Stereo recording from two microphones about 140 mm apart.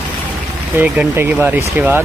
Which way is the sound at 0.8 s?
10° right (ahead or behind).